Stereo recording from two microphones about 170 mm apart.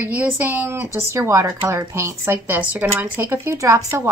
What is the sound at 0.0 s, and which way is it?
Speech, 10° right (ahead or behind).